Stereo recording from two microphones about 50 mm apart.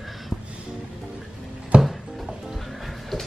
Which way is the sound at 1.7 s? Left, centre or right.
Right.